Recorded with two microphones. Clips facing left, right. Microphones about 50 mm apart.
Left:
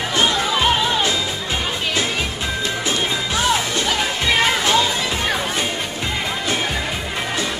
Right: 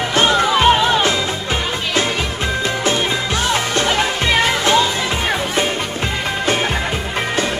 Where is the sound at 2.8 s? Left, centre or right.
Right.